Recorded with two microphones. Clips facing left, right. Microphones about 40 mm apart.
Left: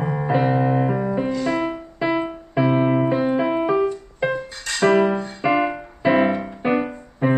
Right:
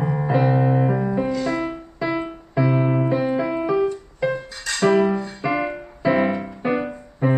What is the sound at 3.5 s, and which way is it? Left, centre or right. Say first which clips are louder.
Music: left 2 dB; left.